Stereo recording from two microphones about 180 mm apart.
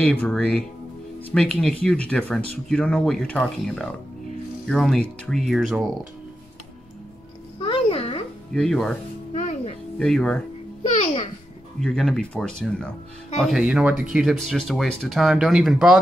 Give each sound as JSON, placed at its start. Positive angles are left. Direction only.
{"t": 0.0, "sound": "speech", "side_deg": 5}
{"t": 7.6, "sound": "a sound", "side_deg": 30}
{"t": 8.5, "sound": "speech", "side_deg": 5}
{"t": 9.3, "sound": "music", "side_deg": 40}
{"t": 9.9, "sound": "speech", "side_deg": 5}
{"t": 11.8, "sound": "speech", "side_deg": 0}